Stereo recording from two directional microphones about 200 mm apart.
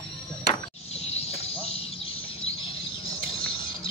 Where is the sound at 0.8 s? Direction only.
30° left (ahead or behind).